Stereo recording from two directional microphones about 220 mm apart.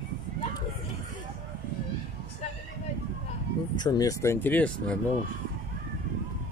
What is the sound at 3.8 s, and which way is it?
Speech, 15° left (ahead or behind).